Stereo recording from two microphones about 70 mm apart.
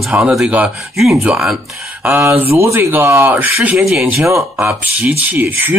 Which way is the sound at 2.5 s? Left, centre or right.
Right.